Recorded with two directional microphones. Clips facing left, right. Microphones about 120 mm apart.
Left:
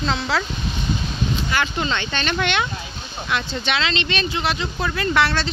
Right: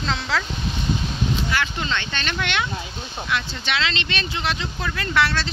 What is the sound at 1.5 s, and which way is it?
Speech, 20° left (ahead or behind).